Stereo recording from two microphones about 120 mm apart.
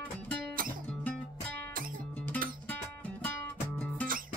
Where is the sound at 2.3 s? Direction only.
15° left (ahead or behind).